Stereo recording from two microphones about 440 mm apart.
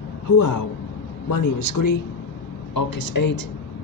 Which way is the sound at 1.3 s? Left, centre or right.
Left.